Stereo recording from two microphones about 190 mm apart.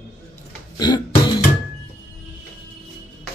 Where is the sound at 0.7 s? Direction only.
20° left (ahead or behind).